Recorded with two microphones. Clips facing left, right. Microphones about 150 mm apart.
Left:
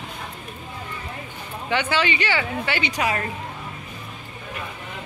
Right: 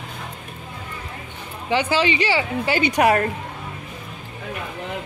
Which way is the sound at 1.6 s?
35° right (ahead or behind).